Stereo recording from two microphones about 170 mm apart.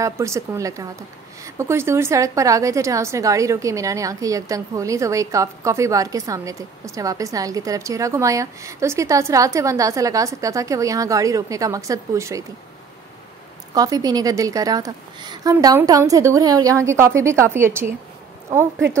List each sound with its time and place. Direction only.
0.0 s a woman's voice: 15° right (ahead or behind)
13.7 s a woman's voice: 20° right (ahead or behind)